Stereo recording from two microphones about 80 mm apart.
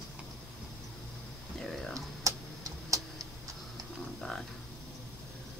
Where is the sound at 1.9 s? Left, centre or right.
Right.